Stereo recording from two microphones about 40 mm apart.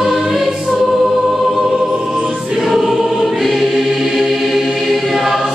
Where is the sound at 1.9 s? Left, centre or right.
Right.